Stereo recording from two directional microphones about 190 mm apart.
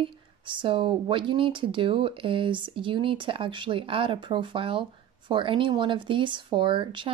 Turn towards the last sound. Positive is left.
turn(degrees=-25)  # may be behind; listen again after turning